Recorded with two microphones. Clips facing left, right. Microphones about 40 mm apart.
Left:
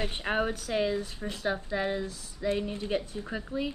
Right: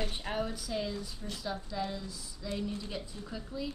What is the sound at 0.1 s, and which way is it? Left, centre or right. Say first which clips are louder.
Speech: left 6 dB; left.